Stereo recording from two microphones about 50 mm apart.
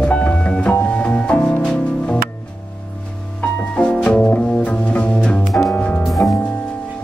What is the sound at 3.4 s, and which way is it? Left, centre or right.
Music, left.